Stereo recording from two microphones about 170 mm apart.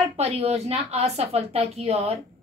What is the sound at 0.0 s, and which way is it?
A woman's voice, 40° right (ahead or behind).